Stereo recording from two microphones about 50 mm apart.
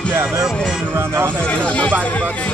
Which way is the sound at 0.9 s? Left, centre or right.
Right.